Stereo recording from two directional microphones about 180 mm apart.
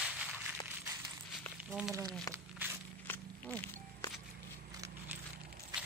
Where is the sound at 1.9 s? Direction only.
20° right (ahead or behind).